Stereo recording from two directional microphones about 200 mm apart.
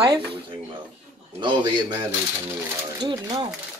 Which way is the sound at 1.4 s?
20° right (ahead or behind).